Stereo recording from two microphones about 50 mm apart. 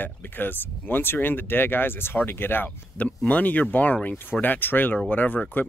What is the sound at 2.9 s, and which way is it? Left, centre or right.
Speech, left.